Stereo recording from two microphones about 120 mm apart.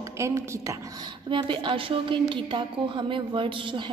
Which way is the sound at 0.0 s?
25° right (ahead or behind).